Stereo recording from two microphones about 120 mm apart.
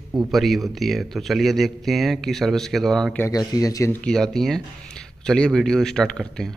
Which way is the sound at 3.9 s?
5° left (ahead or behind).